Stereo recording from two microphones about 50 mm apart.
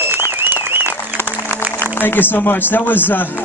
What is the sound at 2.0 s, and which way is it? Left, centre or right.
Speech, left.